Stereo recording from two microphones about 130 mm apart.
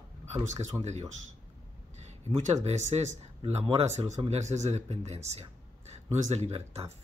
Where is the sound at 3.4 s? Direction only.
50° right (ahead or behind).